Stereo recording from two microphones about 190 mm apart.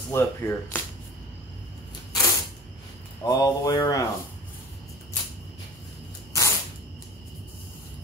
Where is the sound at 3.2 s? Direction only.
20° left (ahead or behind).